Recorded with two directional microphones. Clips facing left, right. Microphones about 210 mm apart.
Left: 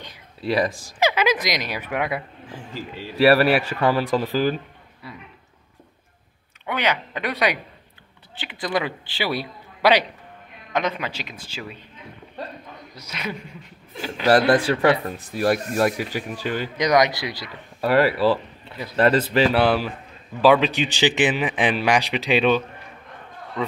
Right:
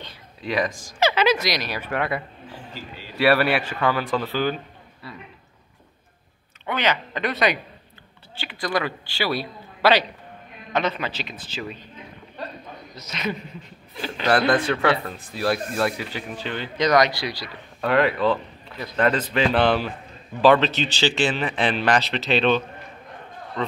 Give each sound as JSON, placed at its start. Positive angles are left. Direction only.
{"t": 0.4, "sound": "speech", "side_deg": 35}
{"t": 0.9, "sound": "speech", "side_deg": 15}
{"t": 3.2, "sound": "a man's voice", "side_deg": 35}
{"t": 6.6, "sound": "a man's voice", "side_deg": 10}
{"t": 12.9, "sound": "speech", "side_deg": 10}
{"t": 15.0, "sound": "a man's voice", "side_deg": 40}
{"t": 16.2, "sound": "a man's voice", "side_deg": 10}
{"t": 17.7, "sound": "speech", "side_deg": 5}
{"t": 18.9, "sound": "a man's voice", "side_deg": 35}
{"t": 19.5, "sound": "speech", "side_deg": 5}